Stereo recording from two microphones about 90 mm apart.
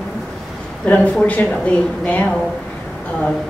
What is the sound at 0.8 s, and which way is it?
A woman's voice, 15° left (ahead or behind).